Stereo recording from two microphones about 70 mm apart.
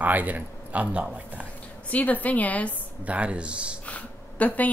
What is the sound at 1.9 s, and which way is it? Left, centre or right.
Speech, left.